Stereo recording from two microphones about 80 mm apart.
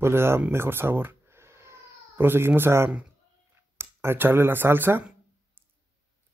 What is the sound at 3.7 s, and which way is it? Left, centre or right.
Speech, right.